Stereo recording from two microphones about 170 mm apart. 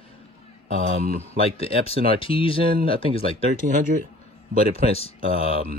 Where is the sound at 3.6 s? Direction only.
50° right (ahead or behind).